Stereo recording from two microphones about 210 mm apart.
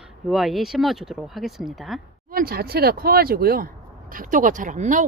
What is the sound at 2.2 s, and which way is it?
Speech, 45° right (ahead or behind).